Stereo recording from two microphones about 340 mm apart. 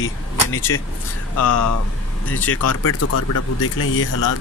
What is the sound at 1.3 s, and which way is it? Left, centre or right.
Speech, left.